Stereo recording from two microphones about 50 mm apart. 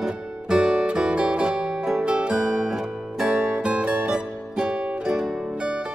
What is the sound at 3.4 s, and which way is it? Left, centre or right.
Music, right.